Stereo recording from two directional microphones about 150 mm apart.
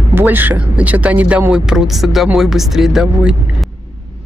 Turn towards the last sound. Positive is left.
turn(degrees=-5)  # may be behind; listen again after turning